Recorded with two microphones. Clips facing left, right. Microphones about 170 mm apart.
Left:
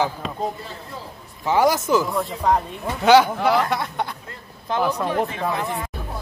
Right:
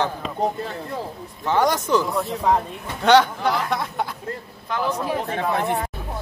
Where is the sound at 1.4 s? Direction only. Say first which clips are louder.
Left 2 dB; 10° left (ahead or behind).